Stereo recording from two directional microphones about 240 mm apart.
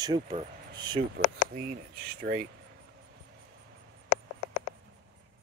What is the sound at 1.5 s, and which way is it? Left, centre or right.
Speech, right.